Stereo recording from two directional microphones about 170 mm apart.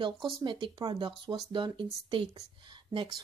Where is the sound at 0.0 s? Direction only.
25° right (ahead or behind).